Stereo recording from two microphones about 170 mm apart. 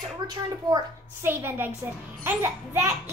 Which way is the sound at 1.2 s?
10° right (ahead or behind).